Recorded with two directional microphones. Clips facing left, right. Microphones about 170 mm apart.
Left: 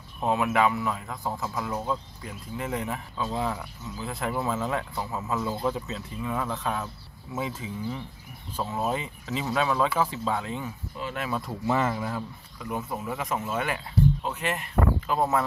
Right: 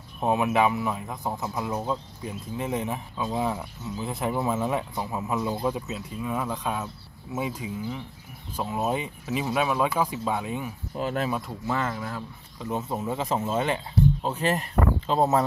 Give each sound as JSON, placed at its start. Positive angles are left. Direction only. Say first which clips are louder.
{"t": 0.2, "sound": "speech", "louder": "right 1 dB", "side_deg": -20}
{"t": 11.0, "sound": "speech", "louder": "right 6 dB", "side_deg": -50}
{"t": 11.6, "sound": "speech", "louder": "left 5 dB", "side_deg": 10}
{"t": 12.5, "sound": "speech", "louder": "right 3 dB", "side_deg": -25}